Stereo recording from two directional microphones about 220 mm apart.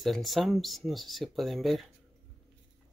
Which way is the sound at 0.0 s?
Centre (ahead or behind).